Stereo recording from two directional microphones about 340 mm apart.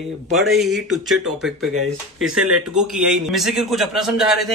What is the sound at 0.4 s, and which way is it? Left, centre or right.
Speech, centre.